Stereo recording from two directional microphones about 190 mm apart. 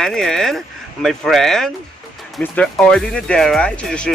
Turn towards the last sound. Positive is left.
turn(degrees=5)  # may be behind; listen again after turning